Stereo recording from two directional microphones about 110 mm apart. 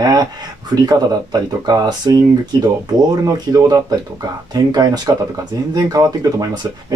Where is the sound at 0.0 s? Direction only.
35° right (ahead or behind).